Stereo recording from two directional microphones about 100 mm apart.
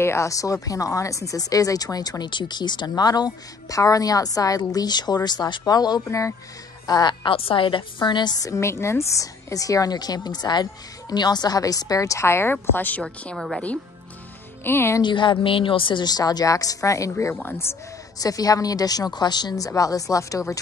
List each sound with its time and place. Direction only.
0.0 s a woman's voice: 30° left (ahead or behind)
6.0 s speech: 30° left (ahead or behind)
6.9 s speech: 45° left (ahead or behind)
7.3 s speech: 65° left (ahead or behind); by 8.5 s 45° left (ahead or behind)
8.5 s a woman's voice: 30° left (ahead or behind); by 13.4 s 10° left (ahead or behind)
14.6 s speech: 20° left (ahead or behind)
15.0 s speech: 50° left (ahead or behind); by 17.1 s 35° left (ahead or behind)
18.2 s a woman's voice: 35° left (ahead or behind)